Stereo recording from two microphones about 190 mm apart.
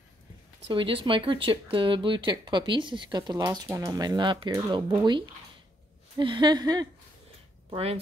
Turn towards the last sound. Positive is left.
turn(degrees=-30)  # may be behind; listen again after turning